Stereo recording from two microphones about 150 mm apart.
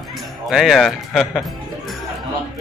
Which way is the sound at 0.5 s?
Centre (ahead or behind).